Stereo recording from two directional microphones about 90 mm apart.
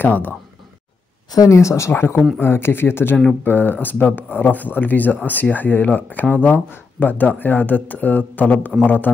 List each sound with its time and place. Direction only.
0.0 s speech: 20° left (ahead or behind)
1.3 s speech: 40° left (ahead or behind); by 9.1 s 20° left (ahead or behind)